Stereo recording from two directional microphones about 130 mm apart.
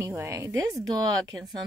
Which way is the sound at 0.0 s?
20° right (ahead or behind).